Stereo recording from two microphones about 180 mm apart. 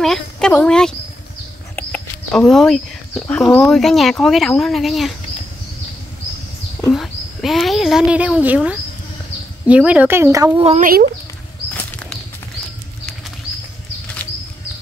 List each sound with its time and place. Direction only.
0.0 s speech: 5° left (ahead or behind)
6.9 s speech: centre (ahead or behind); by 10.6 s 15° right (ahead or behind)
10.6 s speech: 35° right (ahead or behind)